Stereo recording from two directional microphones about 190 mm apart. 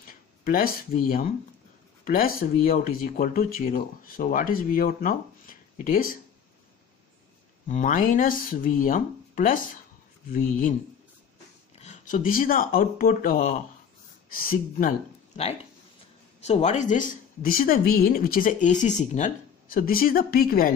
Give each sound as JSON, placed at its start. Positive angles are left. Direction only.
{"t": 0.0, "sound": "a woman's voice", "side_deg": 50}
{"t": 7.6, "sound": "a woman's voice", "side_deg": 40}
{"t": 11.8, "sound": "a woman's voice", "side_deg": 40}
{"t": 16.4, "sound": "a woman's voice", "side_deg": 35}